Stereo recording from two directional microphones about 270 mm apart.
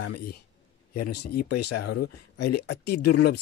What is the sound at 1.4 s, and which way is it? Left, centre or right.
Speech, left.